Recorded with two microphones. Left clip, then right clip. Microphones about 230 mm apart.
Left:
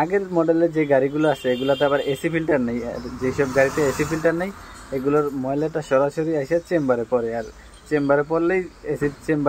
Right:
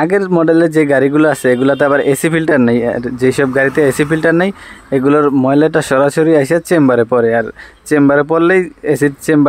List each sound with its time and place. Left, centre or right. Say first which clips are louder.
0.0 s speech: right 8 dB; right